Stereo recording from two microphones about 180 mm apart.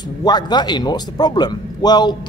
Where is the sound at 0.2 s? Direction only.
25° left (ahead or behind).